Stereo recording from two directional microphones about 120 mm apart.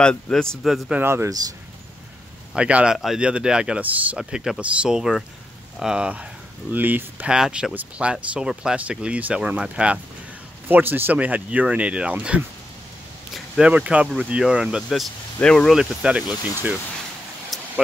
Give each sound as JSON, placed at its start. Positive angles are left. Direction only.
{"t": 0.0, "sound": "speech", "side_deg": 5}
{"t": 1.0, "sound": "speech", "side_deg": -20}
{"t": 2.5, "sound": "speech", "side_deg": -10}
{"t": 17.5, "sound": "vehicle", "side_deg": 0}